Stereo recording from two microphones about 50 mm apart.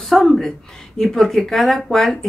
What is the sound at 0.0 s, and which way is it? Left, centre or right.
A woman's voice, centre.